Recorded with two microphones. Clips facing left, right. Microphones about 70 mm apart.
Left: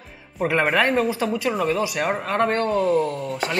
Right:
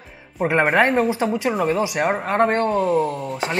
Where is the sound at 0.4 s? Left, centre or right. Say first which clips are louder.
Right 3 dB; centre.